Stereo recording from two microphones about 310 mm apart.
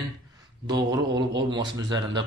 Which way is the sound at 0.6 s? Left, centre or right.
Centre.